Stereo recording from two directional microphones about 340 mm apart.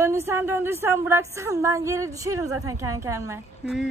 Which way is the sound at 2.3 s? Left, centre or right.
Right.